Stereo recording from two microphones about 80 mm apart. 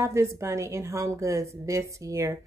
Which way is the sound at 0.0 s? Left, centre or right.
Right.